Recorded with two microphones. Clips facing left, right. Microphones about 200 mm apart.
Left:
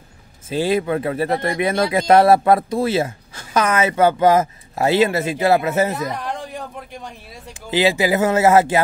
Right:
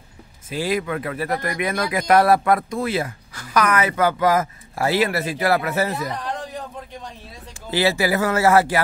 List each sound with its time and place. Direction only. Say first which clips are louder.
0.5 s speech: left 5 dB; 30° left (ahead or behind)